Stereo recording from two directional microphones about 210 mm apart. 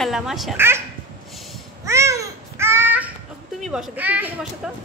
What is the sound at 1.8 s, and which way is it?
Babbling, 15° right (ahead or behind).